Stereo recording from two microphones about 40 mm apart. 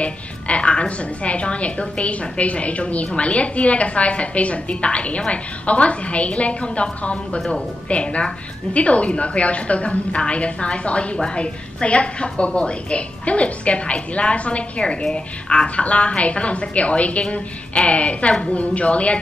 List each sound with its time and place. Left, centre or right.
0.0 s a woman's voice: left